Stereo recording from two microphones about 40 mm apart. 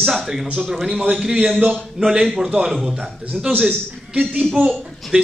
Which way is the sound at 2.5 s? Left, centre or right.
Centre.